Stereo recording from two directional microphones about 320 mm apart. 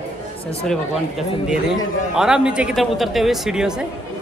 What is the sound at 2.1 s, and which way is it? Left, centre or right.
Speech, centre.